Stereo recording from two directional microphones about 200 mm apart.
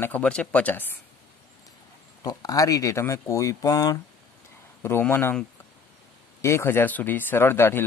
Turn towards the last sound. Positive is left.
turn(degrees=10)  # may be behind; listen again after turning